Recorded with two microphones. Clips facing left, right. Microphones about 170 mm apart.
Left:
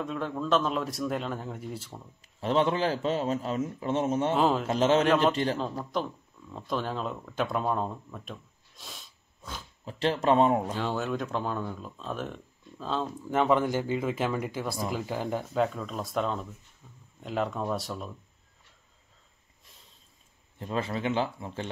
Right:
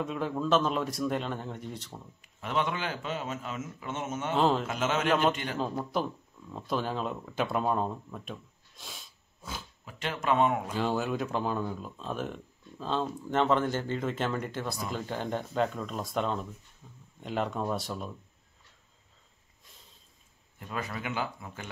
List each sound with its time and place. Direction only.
0.0 s speech: 5° right (ahead or behind)
2.2 s a man's voice: 30° left (ahead or behind)
4.4 s speech: 5° left (ahead or behind)
4.6 s a man's voice: 35° left (ahead or behind)
5.6 s speech: 5° right (ahead or behind)
9.8 s a man's voice: 30° left (ahead or behind)
10.7 s speech: centre (ahead or behind)
20.5 s speech: 25° left (ahead or behind)